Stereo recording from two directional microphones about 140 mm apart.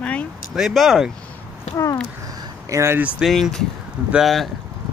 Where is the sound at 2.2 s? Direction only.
25° right (ahead or behind).